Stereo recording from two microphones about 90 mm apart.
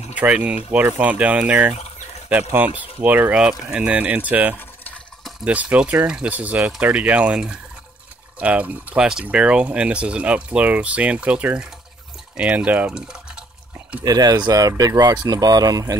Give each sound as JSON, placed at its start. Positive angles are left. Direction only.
{"t": 0.1, "sound": "speech", "side_deg": -15}
{"t": 14.0, "sound": "speech", "side_deg": -45}